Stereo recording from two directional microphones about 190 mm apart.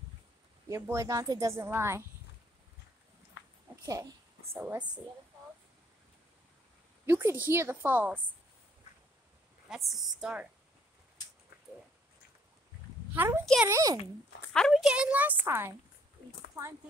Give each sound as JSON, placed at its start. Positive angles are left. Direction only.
{"t": 0.7, "sound": "a woman's voice", "side_deg": -15}
{"t": 3.8, "sound": "a woman's voice", "side_deg": -15}
{"t": 7.1, "sound": "a woman's voice", "side_deg": -10}
{"t": 9.7, "sound": "a woman's voice", "side_deg": 0}
{"t": 13.1, "sound": "a woman's voice", "side_deg": -10}
{"t": 14.5, "sound": "a woman's voice", "side_deg": 0}